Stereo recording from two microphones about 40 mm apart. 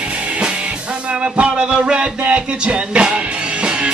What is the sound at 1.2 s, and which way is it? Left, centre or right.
Music, right.